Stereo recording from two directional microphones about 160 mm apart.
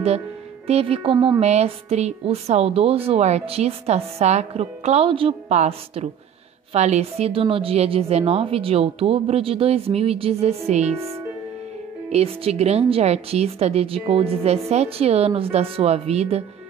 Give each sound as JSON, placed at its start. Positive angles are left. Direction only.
{"t": 0.7, "sound": "a woman's voice", "side_deg": -40}
{"t": 1.1, "sound": "a woman's voice", "side_deg": -25}
{"t": 1.4, "sound": "a woman's voice", "side_deg": -40}
{"t": 12.1, "sound": "a woman's voice", "side_deg": -40}